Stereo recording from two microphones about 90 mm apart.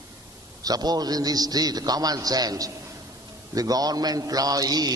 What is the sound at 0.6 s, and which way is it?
A man's voice, 45° right (ahead or behind).